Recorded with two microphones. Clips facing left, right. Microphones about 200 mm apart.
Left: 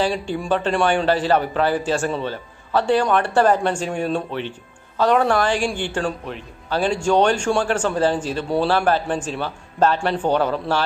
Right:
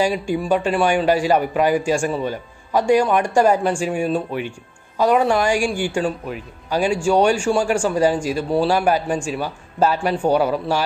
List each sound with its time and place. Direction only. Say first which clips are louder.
0.0 s a man's voice: right 2 dB; 10° right (ahead or behind)